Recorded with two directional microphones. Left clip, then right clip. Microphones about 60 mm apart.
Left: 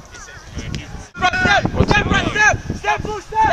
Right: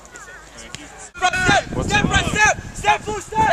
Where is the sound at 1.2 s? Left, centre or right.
Right.